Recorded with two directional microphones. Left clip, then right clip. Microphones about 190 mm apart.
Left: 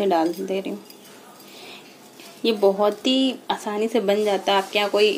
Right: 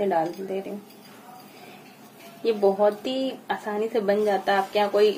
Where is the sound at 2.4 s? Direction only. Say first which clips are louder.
Left 2 dB; 25° left (ahead or behind).